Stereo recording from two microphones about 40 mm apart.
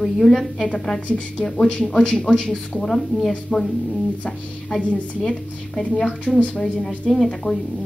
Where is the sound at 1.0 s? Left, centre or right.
Left.